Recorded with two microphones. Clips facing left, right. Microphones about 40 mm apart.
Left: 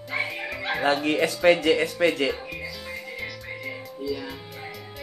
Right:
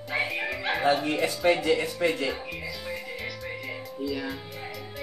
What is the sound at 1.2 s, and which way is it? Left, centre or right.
Speech, left.